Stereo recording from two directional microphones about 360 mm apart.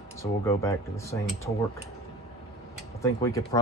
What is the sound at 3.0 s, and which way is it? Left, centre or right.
Speech, centre.